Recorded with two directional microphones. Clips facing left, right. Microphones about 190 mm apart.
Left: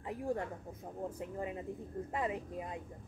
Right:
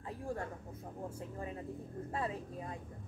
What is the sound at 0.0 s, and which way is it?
Speech, 15° left (ahead or behind).